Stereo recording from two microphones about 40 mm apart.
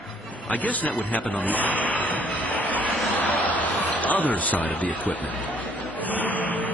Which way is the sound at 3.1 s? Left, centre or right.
Left.